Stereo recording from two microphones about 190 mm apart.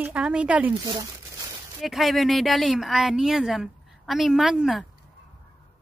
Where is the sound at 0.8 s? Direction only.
20° right (ahead or behind).